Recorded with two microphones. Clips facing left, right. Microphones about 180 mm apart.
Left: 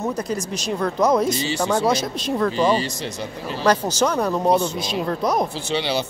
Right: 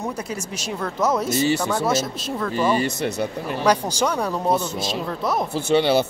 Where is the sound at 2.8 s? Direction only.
60° right (ahead or behind).